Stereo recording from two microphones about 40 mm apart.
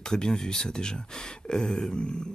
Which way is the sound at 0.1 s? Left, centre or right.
Centre.